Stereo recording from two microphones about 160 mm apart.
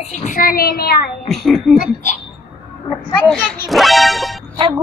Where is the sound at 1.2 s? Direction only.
Centre (ahead or behind).